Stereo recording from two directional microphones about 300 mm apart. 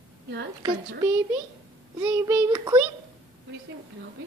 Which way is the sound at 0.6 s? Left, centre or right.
Centre.